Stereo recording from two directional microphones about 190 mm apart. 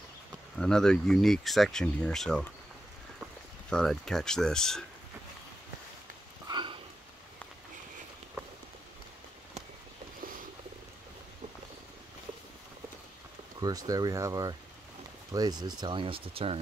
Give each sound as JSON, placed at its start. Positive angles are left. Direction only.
{"t": 0.6, "sound": "speech", "side_deg": 5}
{"t": 3.7, "sound": "speech", "side_deg": 0}
{"t": 6.4, "sound": "a sound", "side_deg": -25}
{"t": 13.6, "sound": "speech", "side_deg": -20}